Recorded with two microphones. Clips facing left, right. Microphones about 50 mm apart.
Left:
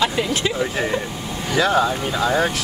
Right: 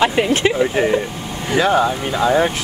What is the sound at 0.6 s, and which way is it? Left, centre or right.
Speech, centre.